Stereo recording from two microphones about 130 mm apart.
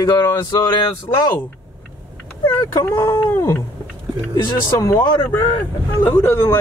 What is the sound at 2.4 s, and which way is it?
Speech, 30° left (ahead or behind).